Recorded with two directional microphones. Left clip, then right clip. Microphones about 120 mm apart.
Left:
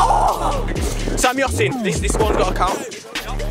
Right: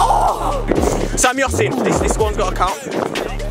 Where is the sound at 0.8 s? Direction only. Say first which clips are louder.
Right 1 dB; centre (ahead or behind).